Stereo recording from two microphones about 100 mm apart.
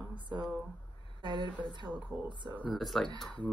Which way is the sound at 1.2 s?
50° right (ahead or behind).